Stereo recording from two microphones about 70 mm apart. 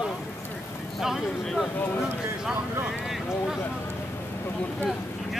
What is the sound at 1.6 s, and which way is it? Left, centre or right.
Speech, left.